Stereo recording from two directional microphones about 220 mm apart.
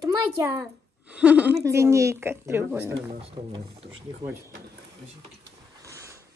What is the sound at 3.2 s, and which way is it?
Speech, 25° right (ahead or behind).